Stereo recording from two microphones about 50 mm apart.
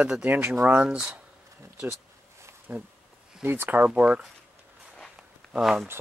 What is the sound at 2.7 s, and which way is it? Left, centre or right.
Speech, right.